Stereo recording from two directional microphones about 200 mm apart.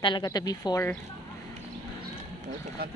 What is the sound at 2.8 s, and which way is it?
Speech, 50° right (ahead or behind).